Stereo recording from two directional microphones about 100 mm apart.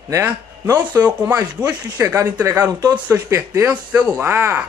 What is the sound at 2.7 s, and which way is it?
Speech, 40° right (ahead or behind).